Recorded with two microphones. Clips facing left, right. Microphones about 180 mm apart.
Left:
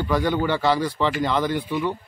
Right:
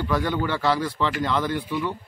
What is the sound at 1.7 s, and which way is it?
Speech, 25° left (ahead or behind).